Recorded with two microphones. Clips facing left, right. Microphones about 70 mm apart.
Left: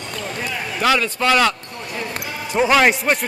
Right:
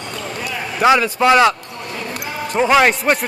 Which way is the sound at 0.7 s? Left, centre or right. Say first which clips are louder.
Right 5 dB; centre.